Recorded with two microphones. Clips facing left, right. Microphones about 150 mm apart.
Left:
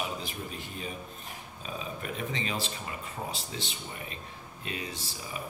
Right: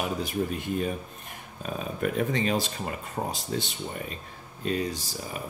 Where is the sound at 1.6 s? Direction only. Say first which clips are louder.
Right 8 dB; 50° right (ahead or behind).